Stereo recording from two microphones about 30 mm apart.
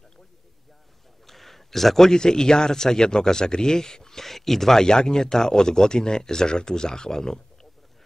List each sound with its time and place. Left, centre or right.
1.2 s a sound: centre
2.0 s speech: left
4.2 s speech: centre
4.8 s speech: left